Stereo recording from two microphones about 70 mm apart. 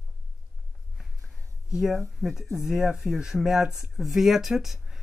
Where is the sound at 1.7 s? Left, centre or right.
Centre.